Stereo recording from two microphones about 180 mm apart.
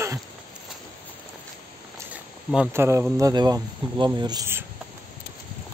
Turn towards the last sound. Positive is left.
turn(degrees=-15)  # may be behind; listen again after turning